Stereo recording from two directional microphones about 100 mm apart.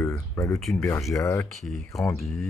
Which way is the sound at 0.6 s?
Centre (ahead or behind).